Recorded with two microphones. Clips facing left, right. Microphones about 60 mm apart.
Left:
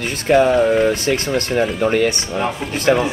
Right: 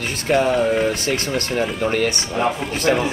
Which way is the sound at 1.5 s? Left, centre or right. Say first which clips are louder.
Left 4 dB; centre.